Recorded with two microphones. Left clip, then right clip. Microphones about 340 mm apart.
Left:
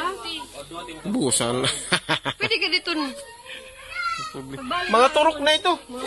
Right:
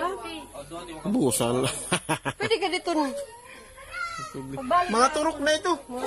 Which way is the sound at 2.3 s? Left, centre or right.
Right.